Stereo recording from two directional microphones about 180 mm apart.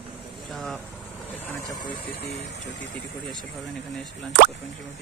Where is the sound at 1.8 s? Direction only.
25° left (ahead or behind).